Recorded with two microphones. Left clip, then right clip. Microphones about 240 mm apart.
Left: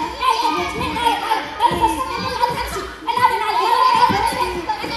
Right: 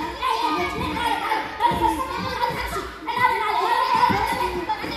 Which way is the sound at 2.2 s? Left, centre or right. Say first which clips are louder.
Left 7 dB; left.